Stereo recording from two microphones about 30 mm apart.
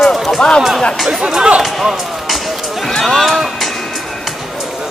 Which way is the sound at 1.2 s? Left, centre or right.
Right.